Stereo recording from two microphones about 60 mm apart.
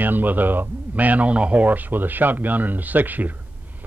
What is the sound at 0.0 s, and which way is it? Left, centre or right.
A man's voice, right.